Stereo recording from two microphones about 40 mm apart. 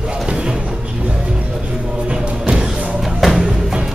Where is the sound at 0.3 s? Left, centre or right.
Right.